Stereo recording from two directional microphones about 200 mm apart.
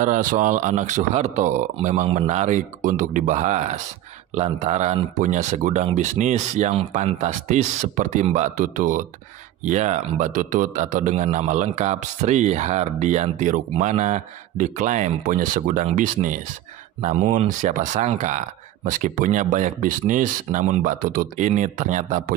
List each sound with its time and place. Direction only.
0.0 s a man's voice: 40° right (ahead or behind)